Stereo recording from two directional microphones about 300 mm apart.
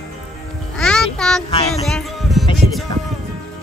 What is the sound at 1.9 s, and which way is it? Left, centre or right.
Music, centre.